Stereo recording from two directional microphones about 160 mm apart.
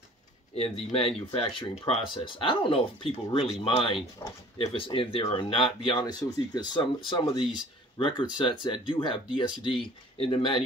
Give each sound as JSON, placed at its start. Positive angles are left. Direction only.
{"t": 0.9, "sound": "speech", "side_deg": 35}
{"t": 4.2, "sound": "speech", "side_deg": 15}
{"t": 4.6, "sound": "speech", "side_deg": 35}